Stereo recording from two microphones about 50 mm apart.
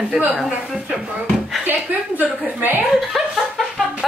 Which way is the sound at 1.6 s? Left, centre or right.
Right.